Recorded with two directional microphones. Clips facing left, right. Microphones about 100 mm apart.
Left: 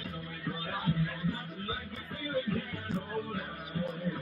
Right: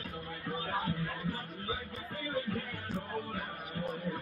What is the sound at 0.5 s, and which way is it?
Music, 40° right (ahead or behind).